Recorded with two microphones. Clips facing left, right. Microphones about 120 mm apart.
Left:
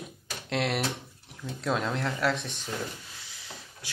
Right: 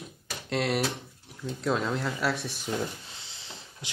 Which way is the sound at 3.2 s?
25° right (ahead or behind).